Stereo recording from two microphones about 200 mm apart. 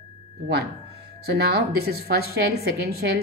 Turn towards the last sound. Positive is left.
turn(degrees=-50)  # may be behind; listen again after turning